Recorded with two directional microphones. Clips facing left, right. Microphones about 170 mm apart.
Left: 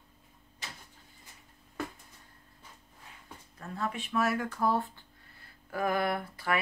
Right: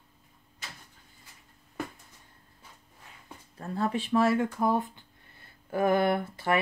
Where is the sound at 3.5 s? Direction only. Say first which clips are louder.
Right 6 dB; 35° right (ahead or behind).